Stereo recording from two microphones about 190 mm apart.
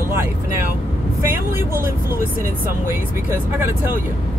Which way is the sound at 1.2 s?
10° right (ahead or behind).